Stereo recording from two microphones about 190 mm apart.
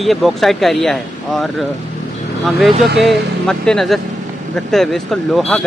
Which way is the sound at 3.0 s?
Centre (ahead or behind).